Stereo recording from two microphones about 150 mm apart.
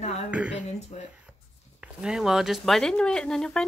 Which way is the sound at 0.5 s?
50° left (ahead or behind).